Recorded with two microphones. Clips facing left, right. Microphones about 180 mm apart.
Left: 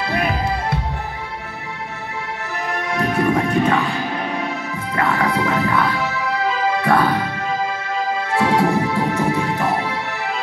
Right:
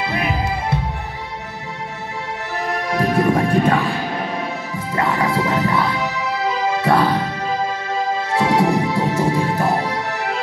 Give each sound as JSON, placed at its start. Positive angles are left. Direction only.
{"t": 3.0, "sound": "music", "side_deg": -30}
{"t": 4.7, "sound": "music", "side_deg": -25}
{"t": 9.6, "sound": "music", "side_deg": -40}